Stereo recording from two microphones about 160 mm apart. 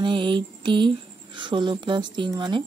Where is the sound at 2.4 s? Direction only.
30° right (ahead or behind).